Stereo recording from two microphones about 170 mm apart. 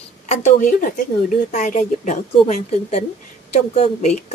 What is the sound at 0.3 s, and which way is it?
A woman's voice, 40° left (ahead or behind).